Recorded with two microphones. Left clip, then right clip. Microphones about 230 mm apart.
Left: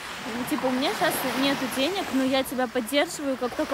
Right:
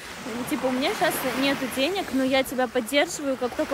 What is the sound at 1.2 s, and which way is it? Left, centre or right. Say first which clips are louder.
Speech: even; left.